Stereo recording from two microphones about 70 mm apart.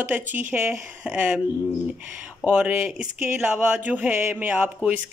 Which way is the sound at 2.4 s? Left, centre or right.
Centre.